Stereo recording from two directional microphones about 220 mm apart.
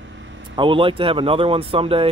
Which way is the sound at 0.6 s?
25° right (ahead or behind).